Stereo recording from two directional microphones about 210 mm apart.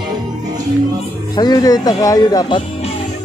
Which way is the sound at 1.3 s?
20° left (ahead or behind).